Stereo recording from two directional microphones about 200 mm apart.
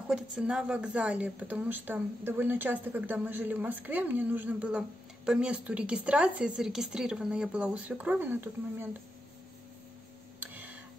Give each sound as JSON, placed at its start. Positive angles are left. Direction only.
{"t": 0.1, "sound": "speech", "side_deg": -5}
{"t": 10.4, "sound": "tick", "side_deg": -10}